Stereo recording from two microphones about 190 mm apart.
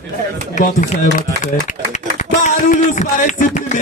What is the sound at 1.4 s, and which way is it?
A man's voice, 40° left (ahead or behind).